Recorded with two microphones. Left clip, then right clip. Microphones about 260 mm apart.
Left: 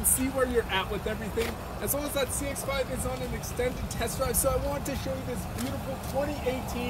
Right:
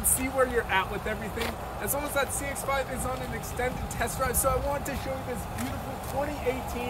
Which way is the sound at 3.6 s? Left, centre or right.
Centre.